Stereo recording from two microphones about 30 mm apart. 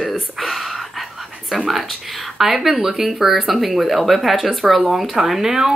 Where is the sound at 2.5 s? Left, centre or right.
Centre.